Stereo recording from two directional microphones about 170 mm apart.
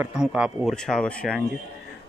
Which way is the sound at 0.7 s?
5° left (ahead or behind).